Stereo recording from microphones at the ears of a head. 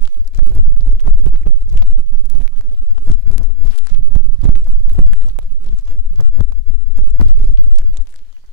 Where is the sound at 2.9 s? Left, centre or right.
Left.